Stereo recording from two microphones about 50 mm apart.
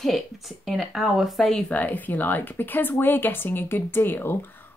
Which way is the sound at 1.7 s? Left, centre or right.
Left.